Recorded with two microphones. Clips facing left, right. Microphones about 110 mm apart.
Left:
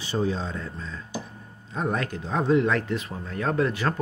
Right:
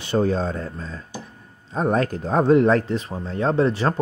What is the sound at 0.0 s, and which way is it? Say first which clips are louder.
A man's voice: right 6 dB; 60° right (ahead or behind).